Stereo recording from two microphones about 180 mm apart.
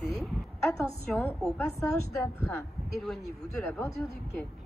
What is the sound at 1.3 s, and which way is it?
Speech, 5° left (ahead or behind).